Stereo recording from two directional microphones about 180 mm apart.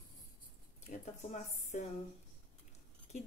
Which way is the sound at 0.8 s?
40° left (ahead or behind).